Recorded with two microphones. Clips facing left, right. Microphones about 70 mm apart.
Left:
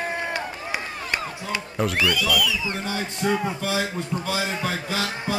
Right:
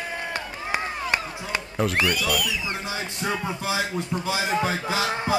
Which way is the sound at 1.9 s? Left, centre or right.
Right.